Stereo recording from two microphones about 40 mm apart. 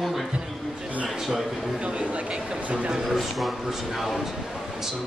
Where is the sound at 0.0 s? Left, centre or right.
Centre.